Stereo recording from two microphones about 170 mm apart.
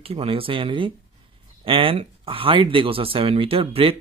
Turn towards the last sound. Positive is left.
turn(degrees=-35)  # may be behind; listen again after turning